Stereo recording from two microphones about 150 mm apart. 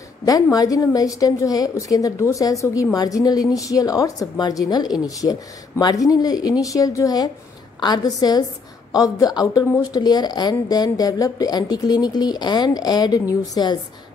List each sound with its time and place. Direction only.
0.2 s speech: 25° left (ahead or behind)